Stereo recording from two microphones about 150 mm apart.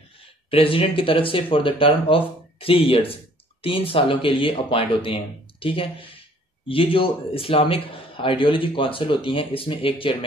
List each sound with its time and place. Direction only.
0.5 s a man's voice: 40° left (ahead or behind)